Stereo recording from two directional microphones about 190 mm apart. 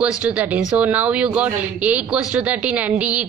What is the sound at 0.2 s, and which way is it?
A woman's voice, 10° right (ahead or behind).